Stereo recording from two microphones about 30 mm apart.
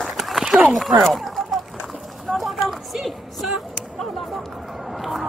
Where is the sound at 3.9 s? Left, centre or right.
Centre.